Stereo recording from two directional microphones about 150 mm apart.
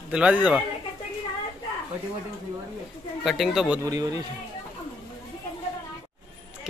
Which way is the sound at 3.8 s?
25° right (ahead or behind).